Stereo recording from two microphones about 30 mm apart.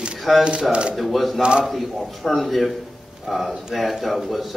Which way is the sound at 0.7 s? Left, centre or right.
Right.